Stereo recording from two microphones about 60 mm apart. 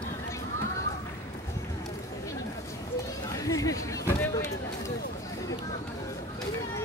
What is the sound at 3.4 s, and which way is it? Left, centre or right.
Chatter, left.